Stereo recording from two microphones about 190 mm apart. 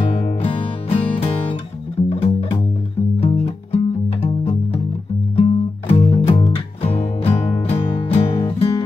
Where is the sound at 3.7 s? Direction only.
30° left (ahead or behind).